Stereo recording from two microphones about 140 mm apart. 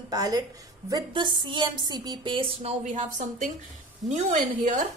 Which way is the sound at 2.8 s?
60° right (ahead or behind).